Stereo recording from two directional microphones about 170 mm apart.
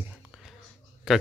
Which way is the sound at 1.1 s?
5° right (ahead or behind).